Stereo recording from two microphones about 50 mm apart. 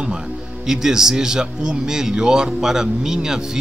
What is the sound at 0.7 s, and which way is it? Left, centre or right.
Speech, centre.